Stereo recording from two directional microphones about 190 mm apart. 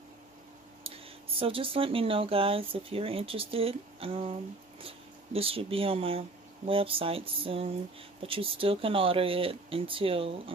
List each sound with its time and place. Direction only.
0.8 s speech: 30° right (ahead or behind)